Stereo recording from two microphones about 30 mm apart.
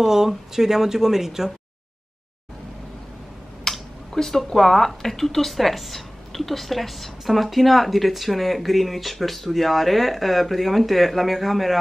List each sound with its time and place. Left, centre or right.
0.0 s speech: centre
3.7 s a sound: centre
4.6 s speech: centre